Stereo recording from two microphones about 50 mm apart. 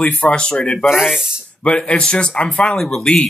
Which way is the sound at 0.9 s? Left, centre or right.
Centre.